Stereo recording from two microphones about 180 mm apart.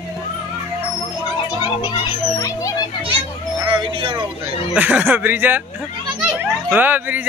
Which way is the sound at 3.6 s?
25° right (ahead or behind).